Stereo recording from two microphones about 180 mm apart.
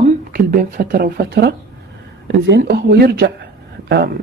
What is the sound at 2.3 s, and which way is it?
Speech, 75° right (ahead or behind).